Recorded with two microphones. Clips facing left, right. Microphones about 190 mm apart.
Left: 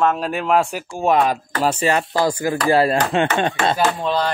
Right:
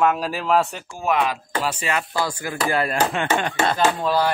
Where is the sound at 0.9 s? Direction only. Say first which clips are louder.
Left 8 dB; 35° left (ahead or behind).